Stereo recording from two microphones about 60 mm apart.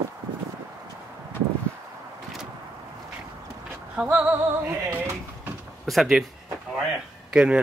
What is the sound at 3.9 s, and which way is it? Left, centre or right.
Music, right.